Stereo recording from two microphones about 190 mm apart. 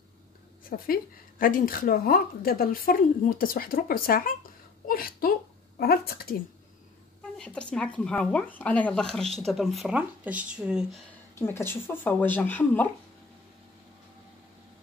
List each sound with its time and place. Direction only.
0.7 s a woman's voice: 50° left (ahead or behind)
7.3 s speech: 5° left (ahead or behind)
11.3 s speech: 10° left (ahead or behind)